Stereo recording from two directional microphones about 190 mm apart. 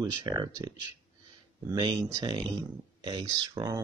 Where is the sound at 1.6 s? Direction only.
20° right (ahead or behind).